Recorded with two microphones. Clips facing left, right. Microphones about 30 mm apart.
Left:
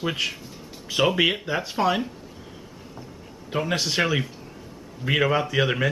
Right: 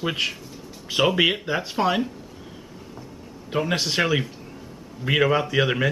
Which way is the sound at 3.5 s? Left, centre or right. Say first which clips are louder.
Right 1 dB; centre.